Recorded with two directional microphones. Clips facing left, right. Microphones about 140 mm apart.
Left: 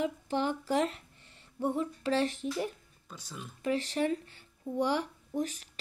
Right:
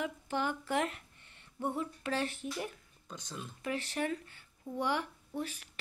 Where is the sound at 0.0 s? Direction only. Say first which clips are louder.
Left 4 dB; 35° left (ahead or behind).